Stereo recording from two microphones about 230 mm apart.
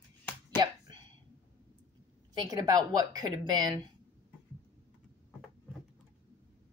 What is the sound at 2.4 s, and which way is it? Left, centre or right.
Speech, centre.